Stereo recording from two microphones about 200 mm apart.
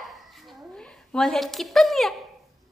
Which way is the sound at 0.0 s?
Centre (ahead or behind).